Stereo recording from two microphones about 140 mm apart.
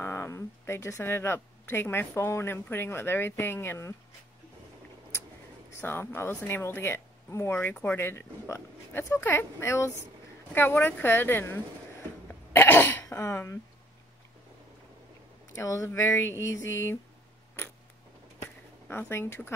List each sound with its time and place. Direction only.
0.0 s speech: 15° left (ahead or behind)
5.8 s speech: 15° left (ahead or behind)
12.3 s cough: 15° left (ahead or behind)
13.1 s speech: 15° left (ahead or behind)
15.6 s speech: 20° left (ahead or behind)
18.4 s a sound: 15° left (ahead or behind)